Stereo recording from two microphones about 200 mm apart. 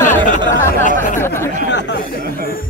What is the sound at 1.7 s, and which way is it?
Speech, 60° left (ahead or behind).